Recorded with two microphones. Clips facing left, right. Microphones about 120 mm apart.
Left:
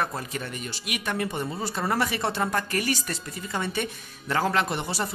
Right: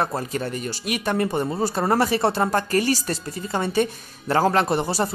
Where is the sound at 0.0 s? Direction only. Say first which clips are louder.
Right 5 dB; 35° right (ahead or behind).